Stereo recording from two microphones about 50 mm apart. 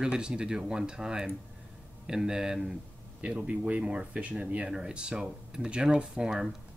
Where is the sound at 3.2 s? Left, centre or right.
Right.